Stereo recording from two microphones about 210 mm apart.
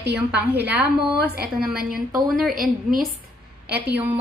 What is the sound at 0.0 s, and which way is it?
Speech, 55° right (ahead or behind).